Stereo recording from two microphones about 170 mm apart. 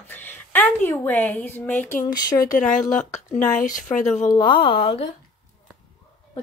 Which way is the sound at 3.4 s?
50° left (ahead or behind).